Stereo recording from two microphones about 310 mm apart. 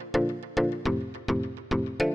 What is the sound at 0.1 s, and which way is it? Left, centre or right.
Music, centre.